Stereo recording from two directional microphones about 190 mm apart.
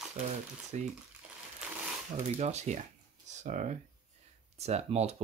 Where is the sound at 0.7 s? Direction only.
40° right (ahead or behind).